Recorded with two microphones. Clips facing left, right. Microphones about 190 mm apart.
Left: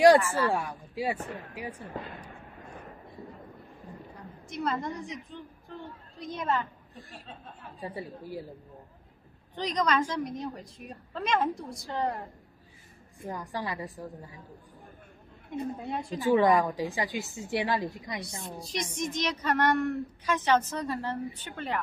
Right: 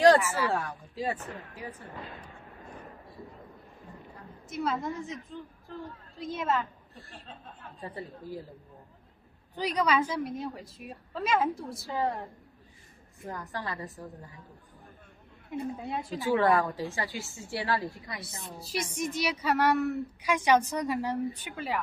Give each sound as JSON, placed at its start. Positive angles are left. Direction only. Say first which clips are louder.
{"t": 0.0, "sound": "a woman's voice", "louder": "left 2 dB", "side_deg": 10}
{"t": 4.5, "sound": "a woman's voice", "louder": "even", "side_deg": 0}
{"t": 7.8, "sound": "a woman's voice", "louder": "left 2 dB", "side_deg": 10}
{"t": 9.6, "sound": "a woman's voice", "louder": "even", "side_deg": -10}
{"t": 13.3, "sound": "a woman's voice", "louder": "left 2 dB", "side_deg": 10}
{"t": 15.5, "sound": "a woman's voice", "louder": "even", "side_deg": 0}
{"t": 16.3, "sound": "a woman's voice", "louder": "left 2 dB", "side_deg": 15}
{"t": 18.6, "sound": "a woman's voice", "louder": "right 1 dB", "side_deg": -5}